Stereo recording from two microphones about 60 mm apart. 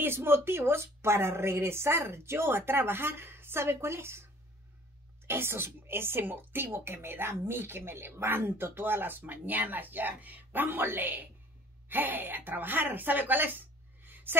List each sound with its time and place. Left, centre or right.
0.0 s a woman's voice: right
5.2 s speech: right